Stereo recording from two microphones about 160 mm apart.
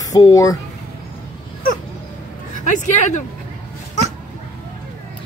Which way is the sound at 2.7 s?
50° left (ahead or behind).